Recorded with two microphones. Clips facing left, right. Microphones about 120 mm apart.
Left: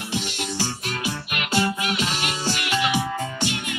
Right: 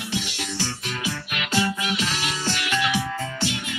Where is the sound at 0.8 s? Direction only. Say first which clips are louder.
Left 1 dB; 55° left (ahead or behind).